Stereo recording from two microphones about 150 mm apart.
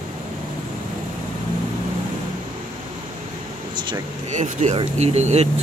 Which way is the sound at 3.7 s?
30° right (ahead or behind).